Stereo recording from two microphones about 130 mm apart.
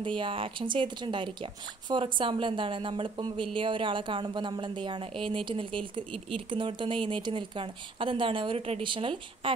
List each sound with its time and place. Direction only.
0.0 s speech: 40° right (ahead or behind)